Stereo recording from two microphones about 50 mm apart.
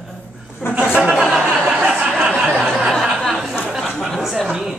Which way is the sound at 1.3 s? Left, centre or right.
Centre.